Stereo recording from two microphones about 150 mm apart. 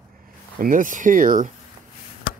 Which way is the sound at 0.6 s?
65° right (ahead or behind).